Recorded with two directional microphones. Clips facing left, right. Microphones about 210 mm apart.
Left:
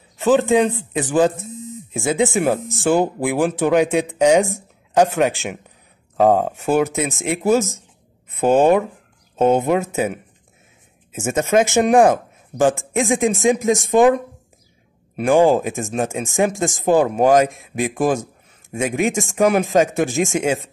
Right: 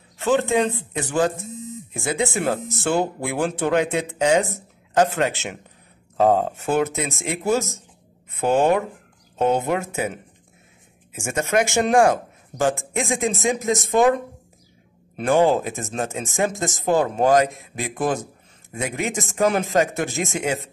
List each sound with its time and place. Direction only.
0.2 s speech: 15° left (ahead or behind)
11.1 s speech: 20° left (ahead or behind)
15.1 s speech: 15° left (ahead or behind)